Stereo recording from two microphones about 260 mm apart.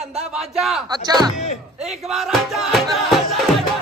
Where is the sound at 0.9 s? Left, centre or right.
Centre.